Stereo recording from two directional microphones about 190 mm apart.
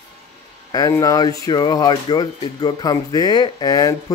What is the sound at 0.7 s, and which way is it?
Speech, 20° left (ahead or behind).